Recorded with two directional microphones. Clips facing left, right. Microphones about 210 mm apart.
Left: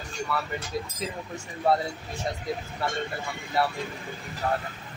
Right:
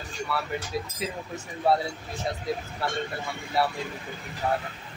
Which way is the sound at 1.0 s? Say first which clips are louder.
Right 1 dB; 5° right (ahead or behind).